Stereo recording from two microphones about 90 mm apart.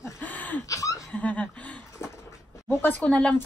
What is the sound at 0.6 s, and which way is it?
Speech, 40° left (ahead or behind).